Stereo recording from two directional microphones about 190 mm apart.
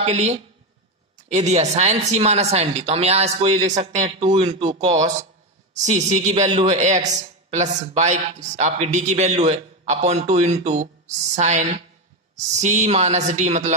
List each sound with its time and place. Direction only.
0.0 s a man's voice: 35° right (ahead or behind)